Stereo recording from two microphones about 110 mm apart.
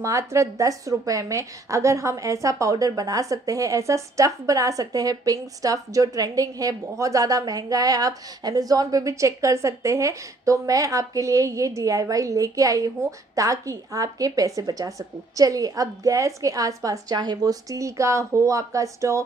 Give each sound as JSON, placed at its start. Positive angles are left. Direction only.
{"t": 0.0, "sound": "a woman's voice", "side_deg": -25}